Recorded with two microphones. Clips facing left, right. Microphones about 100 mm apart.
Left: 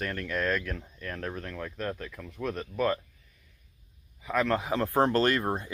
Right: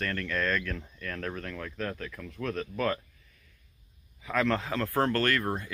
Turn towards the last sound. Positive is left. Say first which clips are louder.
# left 2 dB
turn(degrees=20)  # may be behind; listen again after turning